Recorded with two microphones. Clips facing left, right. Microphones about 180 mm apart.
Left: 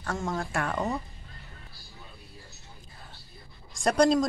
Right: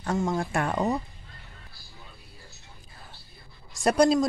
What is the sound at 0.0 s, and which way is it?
Speech, 15° right (ahead or behind).